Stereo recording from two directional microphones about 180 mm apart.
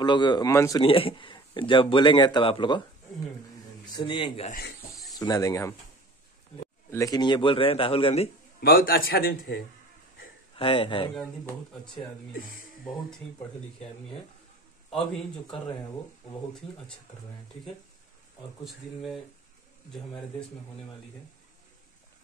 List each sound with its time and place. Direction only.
0.0 s speech: 25° left (ahead or behind)
0.8 s speech: 30° left (ahead or behind)
3.8 s speech: 25° left (ahead or behind)
4.5 s a man's voice: 55° left (ahead or behind)
5.1 s speech: 20° left (ahead or behind)
6.9 s speech: 20° left (ahead or behind)
8.5 s a man's voice: 55° left (ahead or behind)
10.5 s speech: 30° left (ahead or behind)
12.3 s speech: 50° left (ahead or behind)
18.6 s speech: centre (ahead or behind)